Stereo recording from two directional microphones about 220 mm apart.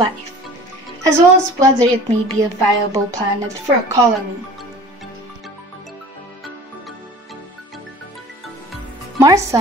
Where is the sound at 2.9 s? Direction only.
15° right (ahead or behind).